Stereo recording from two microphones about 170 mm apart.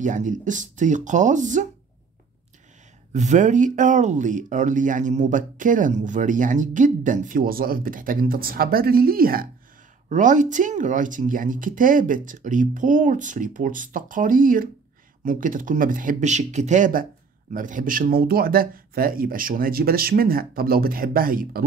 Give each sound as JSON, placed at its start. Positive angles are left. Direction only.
{"t": 0.0, "sound": "speech", "side_deg": -50}
{"t": 3.1, "sound": "speech", "side_deg": -45}
{"t": 10.0, "sound": "speech", "side_deg": -45}